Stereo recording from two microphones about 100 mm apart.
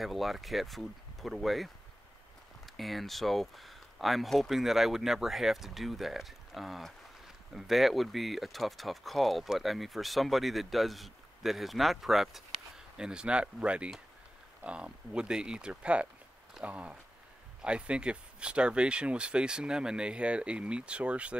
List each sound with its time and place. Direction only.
0.0 s speech: centre (ahead or behind)